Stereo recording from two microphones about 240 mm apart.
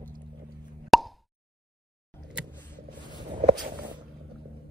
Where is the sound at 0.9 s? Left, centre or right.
Centre.